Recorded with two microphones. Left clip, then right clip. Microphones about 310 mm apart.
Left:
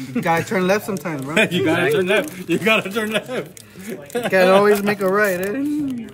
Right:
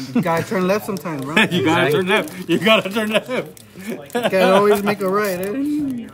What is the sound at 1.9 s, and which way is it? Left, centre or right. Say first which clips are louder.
Speech: even; right.